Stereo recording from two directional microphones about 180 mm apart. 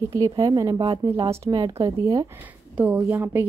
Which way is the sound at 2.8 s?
10° right (ahead or behind).